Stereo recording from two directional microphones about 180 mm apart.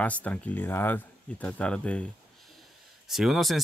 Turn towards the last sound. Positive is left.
turn(degrees=0)  # may be behind; listen again after turning